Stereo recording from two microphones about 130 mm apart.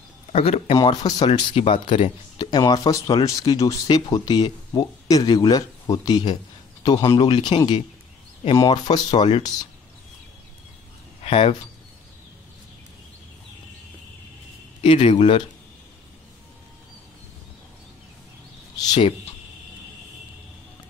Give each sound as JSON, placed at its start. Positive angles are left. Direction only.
{"t": 0.3, "sound": "speech", "side_deg": 50}
{"t": 0.8, "sound": "speech", "side_deg": 35}
{"t": 11.2, "sound": "speech", "side_deg": 50}
{"t": 14.8, "sound": "speech", "side_deg": 45}
{"t": 18.9, "sound": "speech", "side_deg": 45}